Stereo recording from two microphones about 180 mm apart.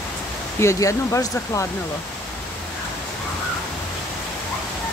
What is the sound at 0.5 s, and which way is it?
Speech, 15° left (ahead or behind).